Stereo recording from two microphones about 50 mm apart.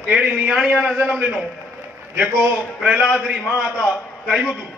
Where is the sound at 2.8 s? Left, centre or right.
Centre.